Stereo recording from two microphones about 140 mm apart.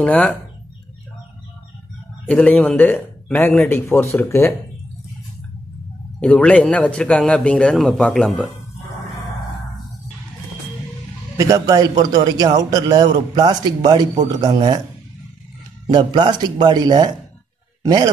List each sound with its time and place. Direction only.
0.0 s speech: 10° left (ahead or behind)
2.2 s speech: 10° left (ahead or behind)
6.1 s speech: 10° left (ahead or behind)
11.3 s a man's voice: 25° right (ahead or behind)
15.9 s a man's voice: 35° right (ahead or behind)